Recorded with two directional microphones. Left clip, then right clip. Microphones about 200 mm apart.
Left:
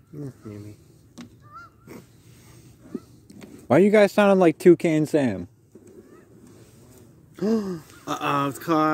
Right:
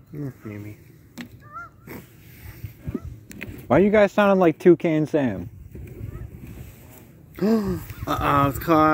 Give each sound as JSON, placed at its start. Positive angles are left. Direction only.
{"t": 3.6, "sound": "speech", "side_deg": 30}
{"t": 7.3, "sound": "speech", "side_deg": 5}